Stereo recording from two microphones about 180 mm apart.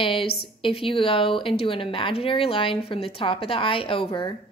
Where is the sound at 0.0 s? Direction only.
30° left (ahead or behind).